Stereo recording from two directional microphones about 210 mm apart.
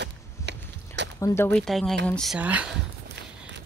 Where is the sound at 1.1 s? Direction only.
15° left (ahead or behind); by 2.8 s 5° right (ahead or behind).